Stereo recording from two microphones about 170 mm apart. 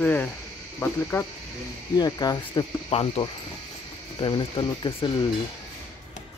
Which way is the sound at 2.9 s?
35° left (ahead or behind).